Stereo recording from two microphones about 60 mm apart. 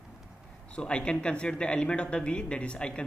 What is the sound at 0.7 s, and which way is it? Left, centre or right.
Speech, centre.